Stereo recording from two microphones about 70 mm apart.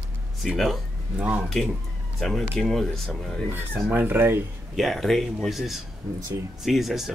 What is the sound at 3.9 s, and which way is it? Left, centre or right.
Speech, right.